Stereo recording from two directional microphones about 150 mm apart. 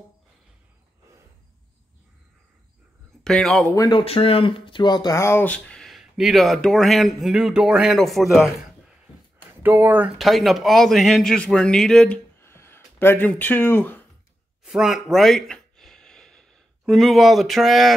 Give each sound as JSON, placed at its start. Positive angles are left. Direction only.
{"t": 3.3, "sound": "speech", "side_deg": 5}
{"t": 3.7, "sound": "speech", "side_deg": 25}
{"t": 4.0, "sound": "speech", "side_deg": 40}
{"t": 9.6, "sound": "speech", "side_deg": -15}
{"t": 10.1, "sound": "speech", "side_deg": 0}
{"t": 12.4, "sound": "a sound", "side_deg": 15}
{"t": 14.6, "sound": "a sound", "side_deg": -5}